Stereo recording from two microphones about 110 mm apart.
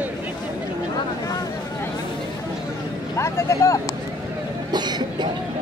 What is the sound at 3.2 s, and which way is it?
Speech, 25° left (ahead or behind).